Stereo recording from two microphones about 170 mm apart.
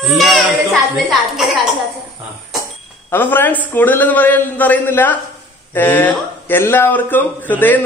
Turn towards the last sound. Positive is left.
turn(degrees=10)  # may be behind; listen again after turning